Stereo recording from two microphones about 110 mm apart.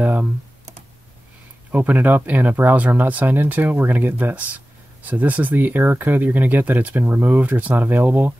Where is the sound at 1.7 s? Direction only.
15° right (ahead or behind).